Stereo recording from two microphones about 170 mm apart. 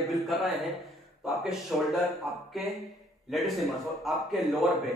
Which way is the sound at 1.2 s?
Centre (ahead or behind).